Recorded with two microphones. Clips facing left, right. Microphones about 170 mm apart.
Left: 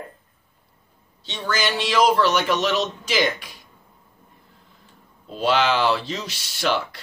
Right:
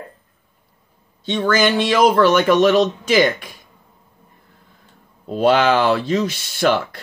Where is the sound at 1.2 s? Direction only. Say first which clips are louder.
Right 9 dB; 55° right (ahead or behind).